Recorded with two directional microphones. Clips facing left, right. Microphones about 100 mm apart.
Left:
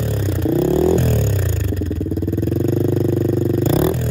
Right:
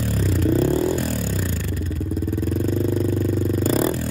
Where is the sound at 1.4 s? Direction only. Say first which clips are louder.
Left 4 dB; 25° left (ahead or behind).